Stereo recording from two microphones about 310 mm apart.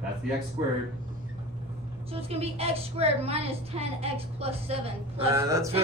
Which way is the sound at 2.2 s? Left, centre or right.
Centre.